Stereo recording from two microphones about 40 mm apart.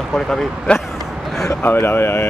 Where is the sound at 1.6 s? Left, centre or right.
Left.